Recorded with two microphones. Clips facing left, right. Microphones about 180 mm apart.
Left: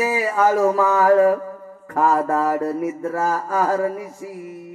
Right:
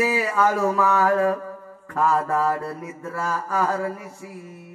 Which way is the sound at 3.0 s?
35° left (ahead or behind).